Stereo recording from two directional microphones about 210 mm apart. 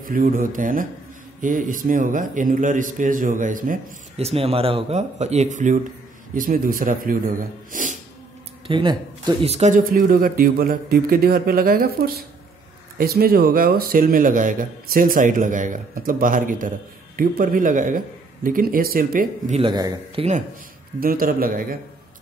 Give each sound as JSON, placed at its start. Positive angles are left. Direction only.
{"t": 0.0, "sound": "speech", "side_deg": -40}
{"t": 8.6, "sound": "speech", "side_deg": -20}
{"t": 19.6, "sound": "a man's voice", "side_deg": -20}
{"t": 21.0, "sound": "speech", "side_deg": -45}